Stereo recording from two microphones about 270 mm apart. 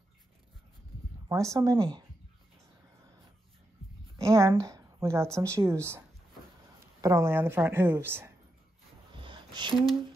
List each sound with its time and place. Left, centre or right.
1.3 s a woman's voice: centre
4.2 s a woman's voice: centre
9.1 s a sound: centre